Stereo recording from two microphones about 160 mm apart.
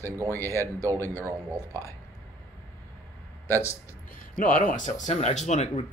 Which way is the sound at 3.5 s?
15° left (ahead or behind).